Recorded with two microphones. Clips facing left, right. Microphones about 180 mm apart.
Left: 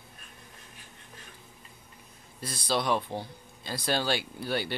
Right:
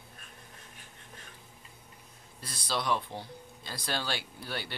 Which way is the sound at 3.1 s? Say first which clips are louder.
Left 6 dB; 50° left (ahead or behind).